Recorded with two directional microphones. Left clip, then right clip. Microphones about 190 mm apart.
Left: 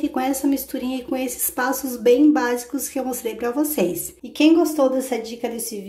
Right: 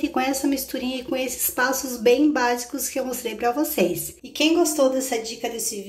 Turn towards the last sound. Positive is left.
turn(degrees=15)  # may be behind; listen again after turning